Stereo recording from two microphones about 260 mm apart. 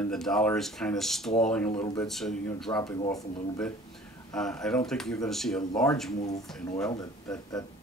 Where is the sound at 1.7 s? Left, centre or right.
Centre.